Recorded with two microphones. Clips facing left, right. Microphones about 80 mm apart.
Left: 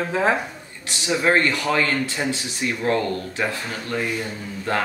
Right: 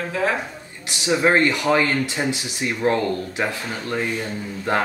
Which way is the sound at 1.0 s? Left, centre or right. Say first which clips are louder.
Right 2 dB; centre.